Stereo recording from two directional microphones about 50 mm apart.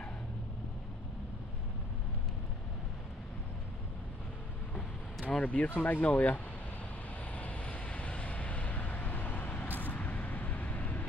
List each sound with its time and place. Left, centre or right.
5.3 s speech: left
5.8 s speech: left
7.3 s vehicle: left